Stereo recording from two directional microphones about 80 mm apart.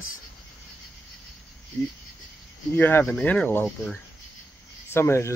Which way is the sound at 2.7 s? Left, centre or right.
Left.